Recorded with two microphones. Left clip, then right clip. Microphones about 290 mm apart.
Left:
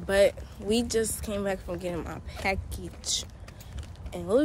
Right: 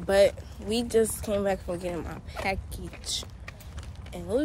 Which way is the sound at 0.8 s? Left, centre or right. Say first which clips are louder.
Right 4 dB; centre.